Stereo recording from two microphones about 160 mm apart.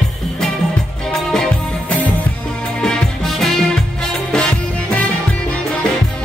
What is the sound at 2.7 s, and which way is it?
Music, 5° left (ahead or behind).